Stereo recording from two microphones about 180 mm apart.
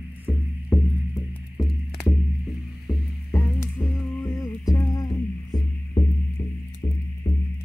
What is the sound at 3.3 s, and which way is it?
Music, 15° left (ahead or behind).